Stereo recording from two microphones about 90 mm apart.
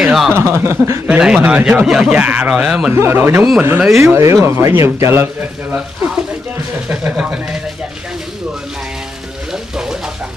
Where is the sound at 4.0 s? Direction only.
30° right (ahead or behind).